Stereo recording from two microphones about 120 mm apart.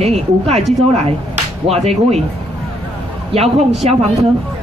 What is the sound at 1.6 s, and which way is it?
Speech, 60° right (ahead or behind).